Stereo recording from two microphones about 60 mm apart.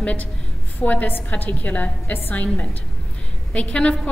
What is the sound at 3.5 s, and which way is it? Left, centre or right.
Speech, centre.